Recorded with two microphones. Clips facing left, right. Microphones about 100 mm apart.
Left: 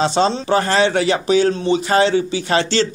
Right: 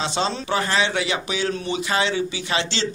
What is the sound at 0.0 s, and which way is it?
A man's voice, 40° left (ahead or behind).